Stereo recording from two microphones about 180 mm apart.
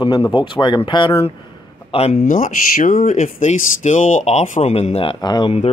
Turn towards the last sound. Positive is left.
turn(degrees=25)  # may be behind; listen again after turning